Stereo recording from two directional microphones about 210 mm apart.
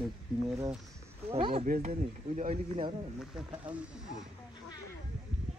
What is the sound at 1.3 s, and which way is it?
Speech, 25° right (ahead or behind).